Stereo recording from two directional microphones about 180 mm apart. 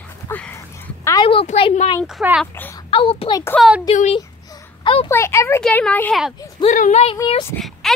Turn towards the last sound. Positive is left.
turn(degrees=0)  # may be behind; listen again after turning